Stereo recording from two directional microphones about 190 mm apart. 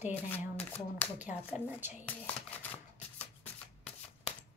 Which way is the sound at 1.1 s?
10° right (ahead or behind).